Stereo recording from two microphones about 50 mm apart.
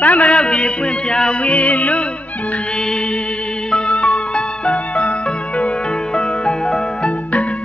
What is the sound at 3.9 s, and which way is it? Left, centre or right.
Music, left.